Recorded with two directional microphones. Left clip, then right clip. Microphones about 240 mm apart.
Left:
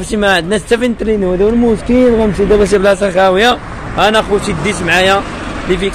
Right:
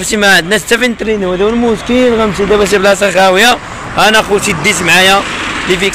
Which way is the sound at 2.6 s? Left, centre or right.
Centre.